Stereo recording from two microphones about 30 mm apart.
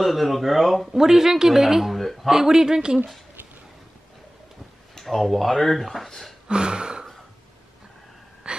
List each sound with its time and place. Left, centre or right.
0.0 s speech: centre
0.9 s speech: centre
2.4 s speech: centre
4.9 s speech: centre
6.4 s a sound: right
8.5 s gasp: right